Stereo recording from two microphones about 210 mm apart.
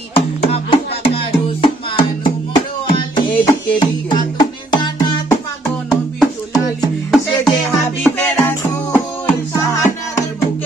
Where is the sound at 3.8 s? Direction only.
20° left (ahead or behind).